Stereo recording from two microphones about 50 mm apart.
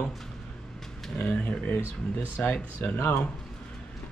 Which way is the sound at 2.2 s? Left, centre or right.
Left.